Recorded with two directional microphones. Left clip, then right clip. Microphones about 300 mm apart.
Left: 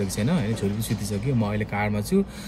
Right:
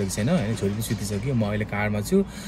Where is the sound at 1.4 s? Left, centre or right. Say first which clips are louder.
Even; centre.